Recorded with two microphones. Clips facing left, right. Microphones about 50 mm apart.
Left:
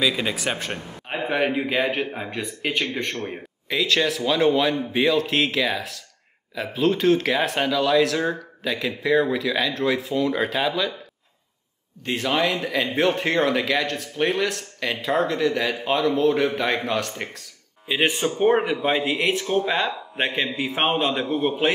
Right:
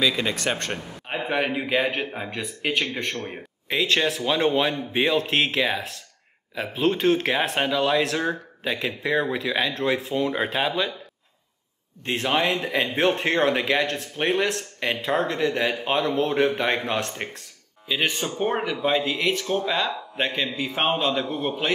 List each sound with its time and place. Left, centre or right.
0.0 s a man's voice: centre
3.7 s speech: right
12.0 s speech: right
17.8 s speech: left